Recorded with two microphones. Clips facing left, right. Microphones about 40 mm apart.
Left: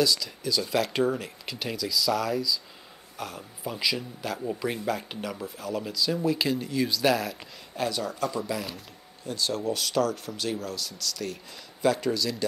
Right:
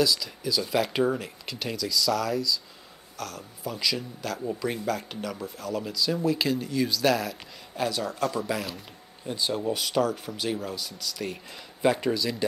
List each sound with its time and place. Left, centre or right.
0.0 s speech: centre
8.7 s speech: right